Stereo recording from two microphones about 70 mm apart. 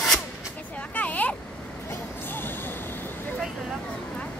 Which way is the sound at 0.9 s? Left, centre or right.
Left.